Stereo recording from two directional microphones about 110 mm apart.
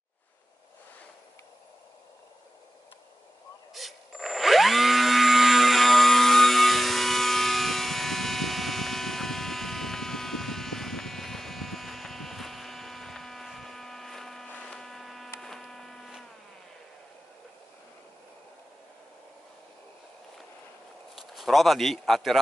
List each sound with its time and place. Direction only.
3.7 s tools: centre (ahead or behind)
14.5 s a sound: 10° left (ahead or behind)
21.2 s speech: centre (ahead or behind)